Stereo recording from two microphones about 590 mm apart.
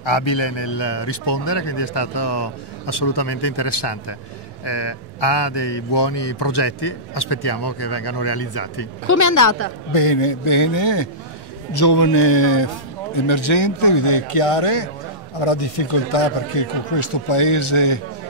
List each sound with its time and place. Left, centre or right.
0.0 s a man's voice: left
9.9 s a man's voice: left